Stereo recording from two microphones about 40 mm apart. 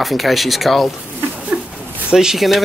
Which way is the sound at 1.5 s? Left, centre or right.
Right.